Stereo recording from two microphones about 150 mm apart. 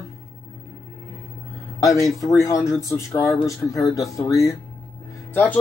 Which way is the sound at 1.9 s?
25° left (ahead or behind).